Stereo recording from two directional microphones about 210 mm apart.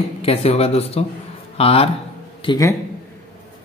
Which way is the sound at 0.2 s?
30° left (ahead or behind).